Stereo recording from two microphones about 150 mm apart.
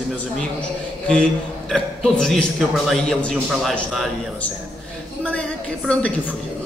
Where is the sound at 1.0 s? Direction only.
5° left (ahead or behind).